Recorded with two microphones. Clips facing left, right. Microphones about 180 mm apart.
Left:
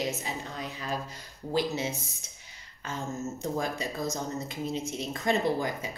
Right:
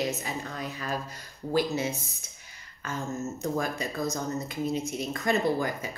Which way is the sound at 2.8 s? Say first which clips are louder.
Right 2 dB; 25° left (ahead or behind).